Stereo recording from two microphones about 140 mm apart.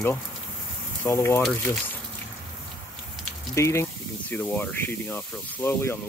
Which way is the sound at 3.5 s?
20° left (ahead or behind).